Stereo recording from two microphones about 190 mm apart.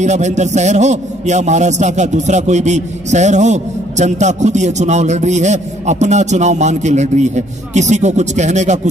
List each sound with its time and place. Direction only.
0.0 s a man's voice: 40° right (ahead or behind)